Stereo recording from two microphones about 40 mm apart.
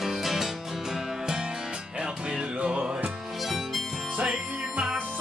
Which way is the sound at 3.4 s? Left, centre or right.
Centre.